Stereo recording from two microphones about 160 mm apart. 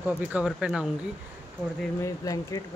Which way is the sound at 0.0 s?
10° right (ahead or behind).